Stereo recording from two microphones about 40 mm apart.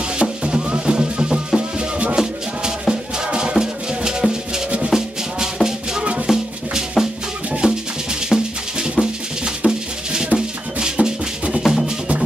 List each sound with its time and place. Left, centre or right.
0.2 s music: centre
1.8 s music: right
2.9 s music: right
7.6 s music: right
11.6 s music: centre